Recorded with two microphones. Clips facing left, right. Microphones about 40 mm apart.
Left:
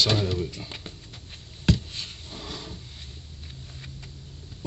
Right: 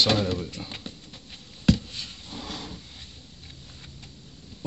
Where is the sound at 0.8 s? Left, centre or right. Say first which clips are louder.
Right 1 dB; left.